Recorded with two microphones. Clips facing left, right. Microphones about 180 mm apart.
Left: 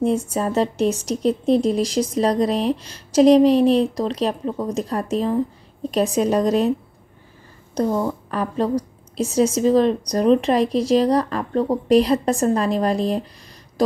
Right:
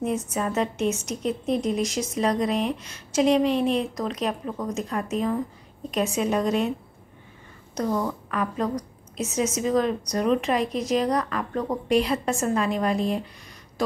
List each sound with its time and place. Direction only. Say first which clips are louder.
0.0 s a woman's voice: left 6 dB; 30° left (ahead or behind)
7.7 s a woman's voice: left 5 dB; 25° left (ahead or behind)